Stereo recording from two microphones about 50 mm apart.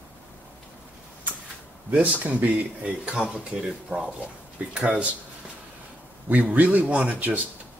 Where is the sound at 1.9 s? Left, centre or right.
Right.